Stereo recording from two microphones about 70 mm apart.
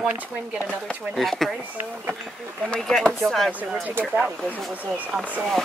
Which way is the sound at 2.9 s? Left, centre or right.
Centre.